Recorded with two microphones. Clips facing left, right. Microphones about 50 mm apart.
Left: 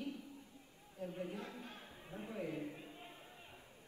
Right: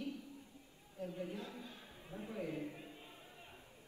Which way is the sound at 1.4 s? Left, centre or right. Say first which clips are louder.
Even; left.